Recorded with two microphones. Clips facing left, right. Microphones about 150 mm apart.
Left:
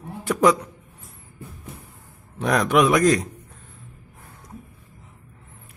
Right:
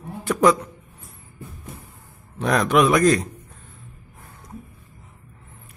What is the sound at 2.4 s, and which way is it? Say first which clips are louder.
Speech: even; 10° left (ahead or behind).